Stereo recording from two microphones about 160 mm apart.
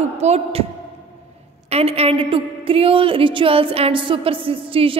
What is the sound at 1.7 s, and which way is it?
A woman's voice, 40° right (ahead or behind).